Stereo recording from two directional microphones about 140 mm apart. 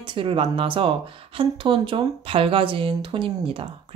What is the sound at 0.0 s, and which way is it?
Speech, 35° right (ahead or behind).